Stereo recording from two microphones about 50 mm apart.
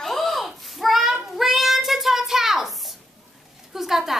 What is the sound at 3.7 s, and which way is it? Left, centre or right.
Speech, centre.